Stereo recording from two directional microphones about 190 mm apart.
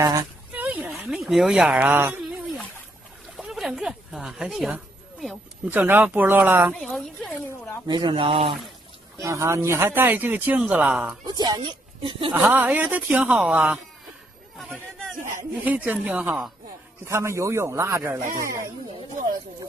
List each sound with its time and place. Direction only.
0.0 s a sound: 20° right (ahead or behind)
1.2 s speech: centre (ahead or behind)
6.7 s a woman's voice: centre (ahead or behind)
7.9 s speech: 25° right (ahead or behind)
9.2 s speech: 15° right (ahead or behind)
11.2 s speech: 20° right (ahead or behind)
12.4 s speech: 10° right (ahead or behind)